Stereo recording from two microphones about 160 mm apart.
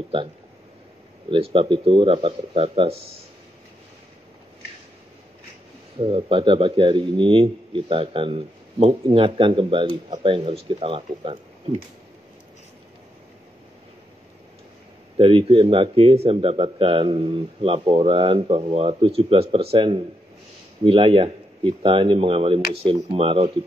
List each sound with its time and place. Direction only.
1.3 s speech: 35° right (ahead or behind)
5.9 s speech: 35° right (ahead or behind)
15.1 s speech: 35° right (ahead or behind)